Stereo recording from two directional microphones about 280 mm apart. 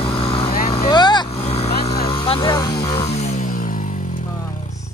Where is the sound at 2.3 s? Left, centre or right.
Centre.